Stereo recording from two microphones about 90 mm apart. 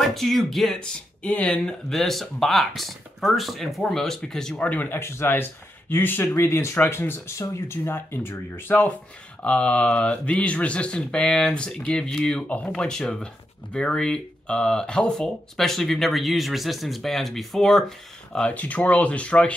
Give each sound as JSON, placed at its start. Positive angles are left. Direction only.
{"t": 0.0, "sound": "speech", "side_deg": 5}